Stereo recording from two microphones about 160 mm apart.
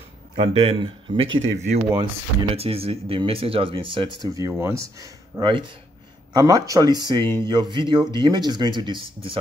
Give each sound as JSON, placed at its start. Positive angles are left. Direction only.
{"t": 0.4, "sound": "speech", "side_deg": -35}
{"t": 5.4, "sound": "speech", "side_deg": -30}